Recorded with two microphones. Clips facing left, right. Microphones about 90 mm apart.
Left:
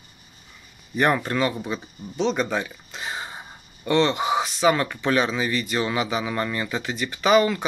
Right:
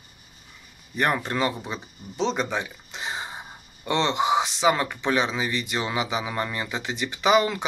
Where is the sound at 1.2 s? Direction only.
25° right (ahead or behind).